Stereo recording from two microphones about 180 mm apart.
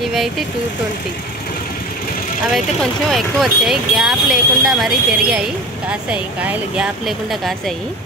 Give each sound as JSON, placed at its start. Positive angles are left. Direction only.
{"t": 2.4, "sound": "speech", "side_deg": 0}